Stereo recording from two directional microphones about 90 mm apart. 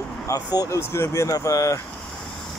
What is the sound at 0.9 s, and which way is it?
Speech, 30° left (ahead or behind).